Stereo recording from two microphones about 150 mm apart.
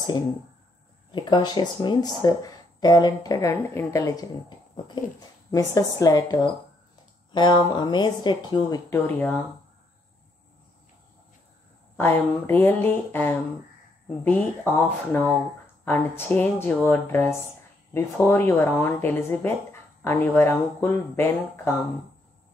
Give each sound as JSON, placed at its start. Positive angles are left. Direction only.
{"t": 1.1, "sound": "speech", "side_deg": 30}
{"t": 12.0, "sound": "speech", "side_deg": 15}